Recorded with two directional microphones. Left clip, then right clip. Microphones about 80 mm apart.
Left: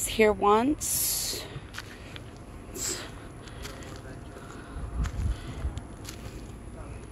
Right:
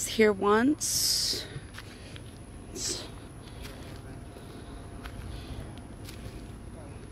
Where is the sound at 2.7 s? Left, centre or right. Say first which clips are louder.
Even; right.